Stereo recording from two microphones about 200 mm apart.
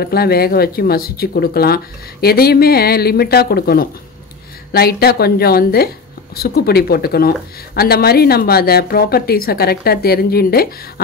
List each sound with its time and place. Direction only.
0.0 s speech: 50° left (ahead or behind)